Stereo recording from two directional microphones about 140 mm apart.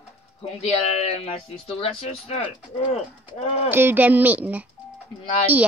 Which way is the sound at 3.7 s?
15° right (ahead or behind).